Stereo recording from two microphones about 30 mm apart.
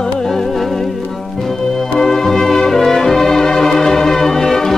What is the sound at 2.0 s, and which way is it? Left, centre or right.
Music, centre.